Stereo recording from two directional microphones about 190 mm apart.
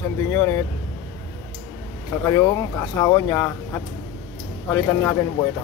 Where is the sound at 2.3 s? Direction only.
20° left (ahead or behind).